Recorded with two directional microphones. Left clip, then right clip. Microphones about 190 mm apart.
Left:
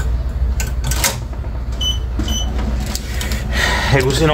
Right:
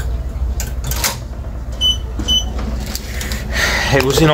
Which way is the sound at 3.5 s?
15° right (ahead or behind).